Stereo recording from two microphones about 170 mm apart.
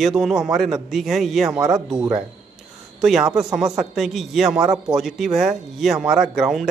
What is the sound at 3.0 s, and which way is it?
A man's voice, centre (ahead or behind).